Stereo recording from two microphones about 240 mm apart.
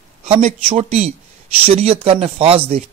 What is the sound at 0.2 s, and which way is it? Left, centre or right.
A man's voice, right.